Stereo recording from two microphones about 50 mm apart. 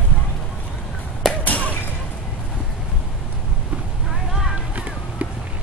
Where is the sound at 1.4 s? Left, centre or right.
Left.